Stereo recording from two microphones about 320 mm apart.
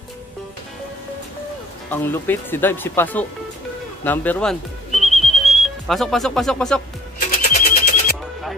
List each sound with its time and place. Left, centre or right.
1.9 s speech: centre
4.0 s music: centre
7.4 s a sound: left